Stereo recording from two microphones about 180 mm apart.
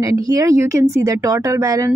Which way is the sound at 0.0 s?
20° right (ahead or behind).